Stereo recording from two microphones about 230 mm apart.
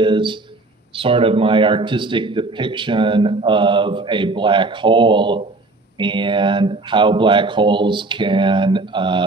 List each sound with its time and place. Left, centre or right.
0.0 s a man's voice: right